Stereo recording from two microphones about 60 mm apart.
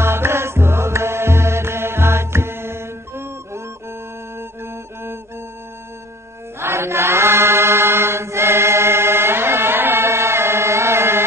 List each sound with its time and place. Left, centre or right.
0.0 s music: right
6.6 s chant: right